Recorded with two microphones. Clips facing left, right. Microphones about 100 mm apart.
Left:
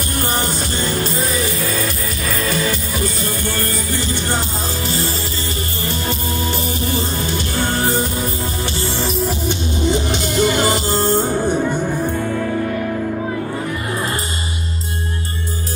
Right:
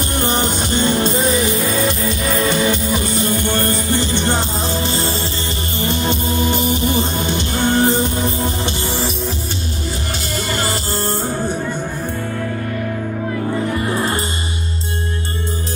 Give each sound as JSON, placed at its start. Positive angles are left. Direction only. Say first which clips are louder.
{"t": 0.2, "sound": "music", "louder": "right 2 dB", "side_deg": -20}
{"t": 10.4, "sound": "music", "louder": "left 7 dB", "side_deg": 15}